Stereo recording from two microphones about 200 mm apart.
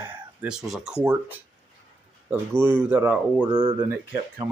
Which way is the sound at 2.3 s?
10° right (ahead or behind).